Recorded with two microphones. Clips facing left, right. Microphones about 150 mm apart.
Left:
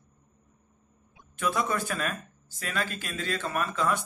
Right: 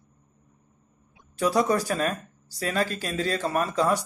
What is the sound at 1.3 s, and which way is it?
Speech, 35° right (ahead or behind).